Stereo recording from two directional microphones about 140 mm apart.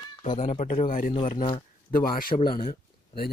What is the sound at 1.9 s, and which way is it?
A man's voice, 85° left.